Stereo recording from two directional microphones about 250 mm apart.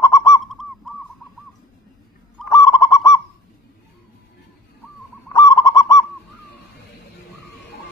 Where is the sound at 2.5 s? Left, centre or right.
Centre.